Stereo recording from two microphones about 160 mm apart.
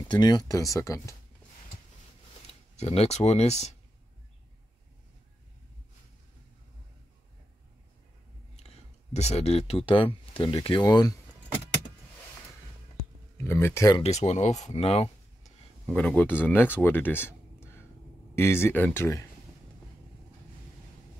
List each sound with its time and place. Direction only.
0.1 s speech: 25° left (ahead or behind)
2.8 s speech: 40° left (ahead or behind)
8.5 s speech: 45° left (ahead or behind); by 11.1 s 25° left (ahead or behind)
13.4 s speech: 15° left (ahead or behind)
14.0 s speech: 45° left (ahead or behind)
14.8 s a sound: 40° left (ahead or behind)
15.9 s speech: 5° left (ahead or behind)